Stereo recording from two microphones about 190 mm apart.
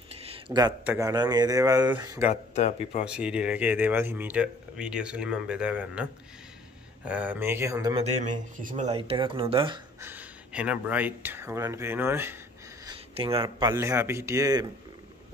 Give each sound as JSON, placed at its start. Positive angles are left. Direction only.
{"t": 0.2, "sound": "a sound", "side_deg": -25}
{"t": 0.8, "sound": "speech", "side_deg": -15}
{"t": 2.5, "sound": "speech", "side_deg": 35}
{"t": 3.1, "sound": "speech", "side_deg": -5}
{"t": 7.1, "sound": "speech", "side_deg": -10}
{"t": 7.9, "sound": "speech", "side_deg": -35}
{"t": 9.9, "sound": "speech", "side_deg": -10}
{"t": 12.8, "sound": "speech", "side_deg": -30}